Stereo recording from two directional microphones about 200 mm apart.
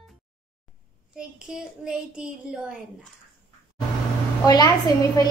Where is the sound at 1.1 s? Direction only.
5° right (ahead or behind).